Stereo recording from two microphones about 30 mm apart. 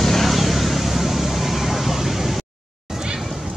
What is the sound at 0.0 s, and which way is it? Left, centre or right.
Vehicle, centre.